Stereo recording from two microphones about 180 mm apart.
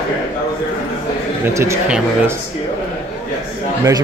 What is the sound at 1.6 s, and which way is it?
Speech, 15° right (ahead or behind).